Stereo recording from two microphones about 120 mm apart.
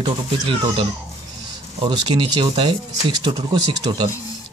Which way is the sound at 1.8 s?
40° right (ahead or behind).